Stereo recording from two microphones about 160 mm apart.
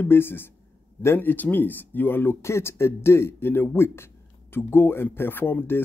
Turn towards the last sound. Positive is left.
turn(degrees=15)  # may be behind; listen again after turning